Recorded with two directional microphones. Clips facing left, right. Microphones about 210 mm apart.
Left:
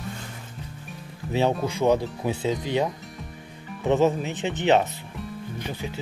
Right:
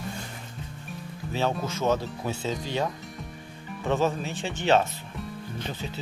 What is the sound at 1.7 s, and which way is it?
Speech, 15° left (ahead or behind).